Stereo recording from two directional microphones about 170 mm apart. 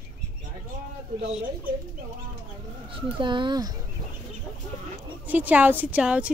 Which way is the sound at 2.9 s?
30° right (ahead or behind).